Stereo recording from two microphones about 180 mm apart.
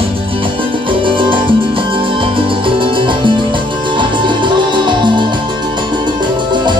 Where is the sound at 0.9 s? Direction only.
30° right (ahead or behind).